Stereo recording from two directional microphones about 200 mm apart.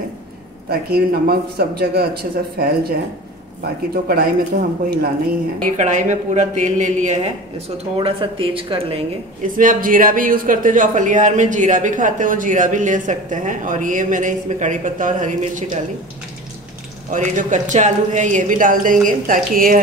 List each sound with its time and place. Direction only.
0.7 s a man's voice: 50° right (ahead or behind)
5.6 s a man's voice: 35° right (ahead or behind)
9.4 s a man's voice: 40° right (ahead or behind)
17.1 s a man's voice: 40° right (ahead or behind)